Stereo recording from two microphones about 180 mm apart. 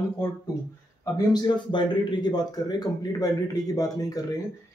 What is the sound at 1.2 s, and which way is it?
A man's voice, 25° left (ahead or behind).